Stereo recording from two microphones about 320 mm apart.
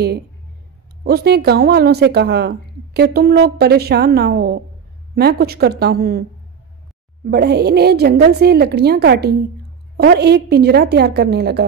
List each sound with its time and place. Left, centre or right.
1.0 s a woman's voice: right
7.2 s a woman's voice: right